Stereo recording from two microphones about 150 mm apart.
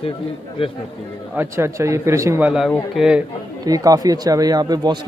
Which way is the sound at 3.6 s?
25° right (ahead or behind).